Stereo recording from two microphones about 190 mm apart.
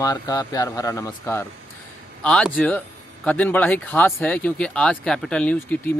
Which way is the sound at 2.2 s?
5° left (ahead or behind).